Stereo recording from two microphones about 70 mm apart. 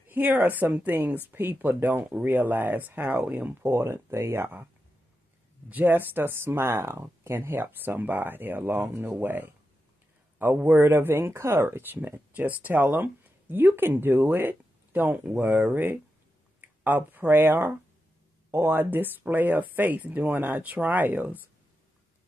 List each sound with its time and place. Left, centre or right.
0.1 s speech: right
3.7 s speech: right
5.7 s speech: right